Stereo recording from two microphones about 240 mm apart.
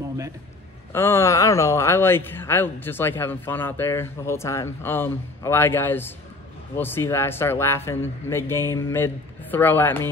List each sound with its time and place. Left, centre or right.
0.9 s speech: centre